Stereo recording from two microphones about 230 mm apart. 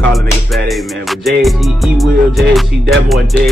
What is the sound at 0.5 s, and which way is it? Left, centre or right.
Music, centre.